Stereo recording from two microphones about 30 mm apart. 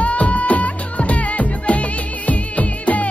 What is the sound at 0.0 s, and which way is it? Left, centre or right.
Music, left.